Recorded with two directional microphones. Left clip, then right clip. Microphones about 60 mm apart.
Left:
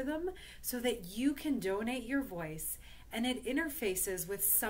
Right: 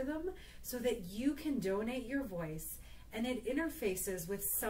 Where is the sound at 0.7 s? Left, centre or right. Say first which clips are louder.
Left 1 dB; left.